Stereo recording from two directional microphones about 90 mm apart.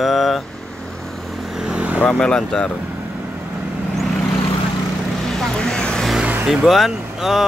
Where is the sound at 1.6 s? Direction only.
15° right (ahead or behind).